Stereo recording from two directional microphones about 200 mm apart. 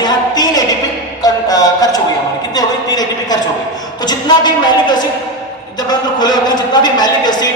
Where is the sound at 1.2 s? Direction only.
20° left (ahead or behind).